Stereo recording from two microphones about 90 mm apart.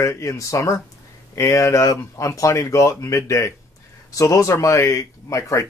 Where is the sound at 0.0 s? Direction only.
35° left (ahead or behind).